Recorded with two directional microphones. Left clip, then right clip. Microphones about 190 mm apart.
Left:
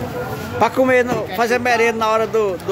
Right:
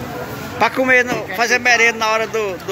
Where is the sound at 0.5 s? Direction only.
20° left (ahead or behind).